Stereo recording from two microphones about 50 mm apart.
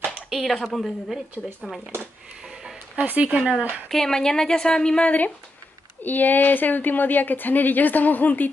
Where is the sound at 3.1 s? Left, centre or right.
Right.